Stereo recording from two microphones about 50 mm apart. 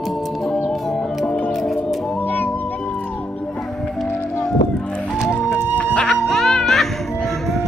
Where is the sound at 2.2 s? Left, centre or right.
Left.